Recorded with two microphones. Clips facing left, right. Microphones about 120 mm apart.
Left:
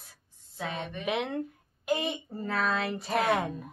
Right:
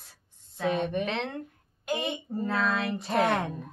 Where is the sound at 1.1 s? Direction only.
10° left (ahead or behind).